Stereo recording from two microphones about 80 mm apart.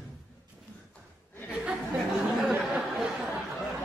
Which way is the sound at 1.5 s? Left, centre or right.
Centre.